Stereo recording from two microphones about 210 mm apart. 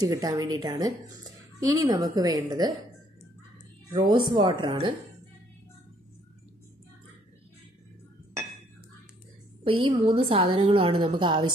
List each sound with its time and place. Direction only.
0.0 s speech: 20° right (ahead or behind)
3.9 s a woman's voice: 20° right (ahead or behind)
9.7 s a woman's voice: 25° right (ahead or behind)